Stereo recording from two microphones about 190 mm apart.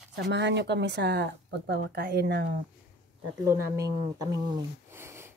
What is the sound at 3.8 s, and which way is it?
Speech, 20° right (ahead or behind).